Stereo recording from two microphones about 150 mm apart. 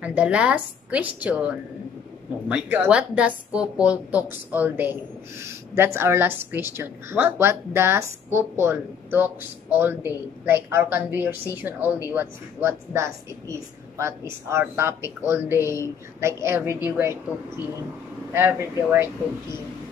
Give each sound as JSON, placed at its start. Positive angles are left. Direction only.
{"t": 0.0, "sound": "speech", "side_deg": -10}
{"t": 18.3, "sound": "speech", "side_deg": -15}